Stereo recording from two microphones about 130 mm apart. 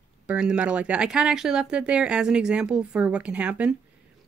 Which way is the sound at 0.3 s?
10° right (ahead or behind).